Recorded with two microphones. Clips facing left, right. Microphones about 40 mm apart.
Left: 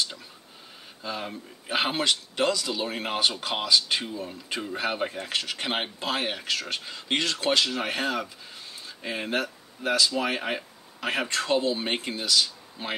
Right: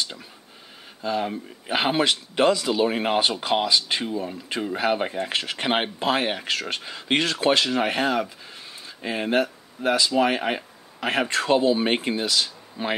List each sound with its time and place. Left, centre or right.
1.0 s speech: centre